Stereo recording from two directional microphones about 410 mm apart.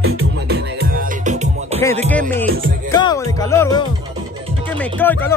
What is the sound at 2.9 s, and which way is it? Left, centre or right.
Music, centre.